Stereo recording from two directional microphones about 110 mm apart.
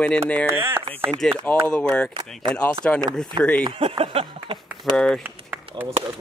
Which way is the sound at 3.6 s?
55° right (ahead or behind).